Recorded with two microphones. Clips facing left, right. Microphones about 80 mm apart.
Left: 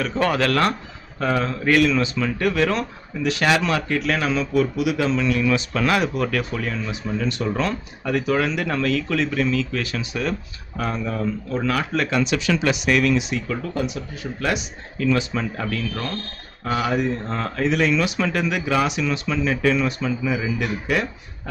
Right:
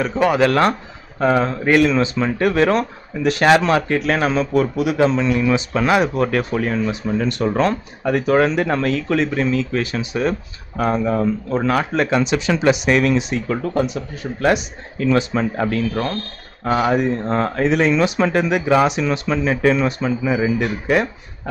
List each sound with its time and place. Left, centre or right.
0.1 s speech: centre
0.5 s a man's voice: right
6.1 s a man's voice: right